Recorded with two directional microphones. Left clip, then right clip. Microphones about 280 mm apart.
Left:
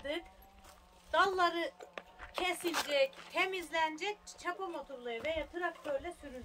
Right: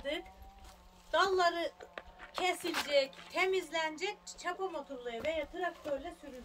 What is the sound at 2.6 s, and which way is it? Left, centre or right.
Speech, left.